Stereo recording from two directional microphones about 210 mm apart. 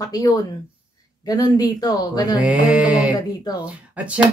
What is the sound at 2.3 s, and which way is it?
Mantra, 5° right (ahead or behind).